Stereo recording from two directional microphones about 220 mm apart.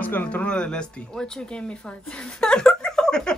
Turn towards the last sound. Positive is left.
turn(degrees=5)  # may be behind; listen again after turning